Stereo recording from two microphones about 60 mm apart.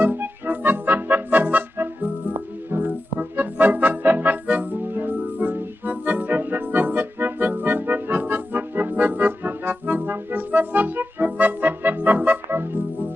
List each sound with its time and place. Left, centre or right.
0.0 s music: right